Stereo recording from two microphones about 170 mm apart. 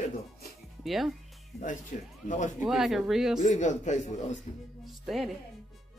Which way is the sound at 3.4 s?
45° left (ahead or behind).